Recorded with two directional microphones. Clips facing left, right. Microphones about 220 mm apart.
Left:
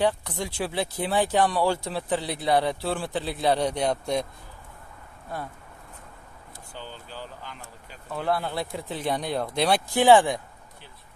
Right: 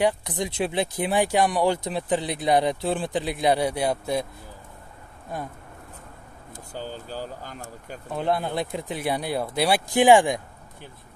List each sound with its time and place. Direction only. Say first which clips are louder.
0.0 s speech: right 2 dB; 15° right (ahead or behind)
6.7 s speech: right 7 dB; 40° right (ahead or behind)
8.1 s speech: right 2 dB; 20° right (ahead or behind)